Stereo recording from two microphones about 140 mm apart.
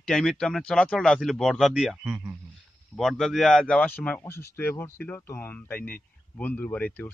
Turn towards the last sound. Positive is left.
turn(degrees=10)  # may be behind; listen again after turning